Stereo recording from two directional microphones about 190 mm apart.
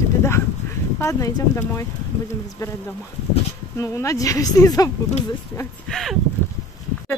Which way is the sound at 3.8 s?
15° left (ahead or behind).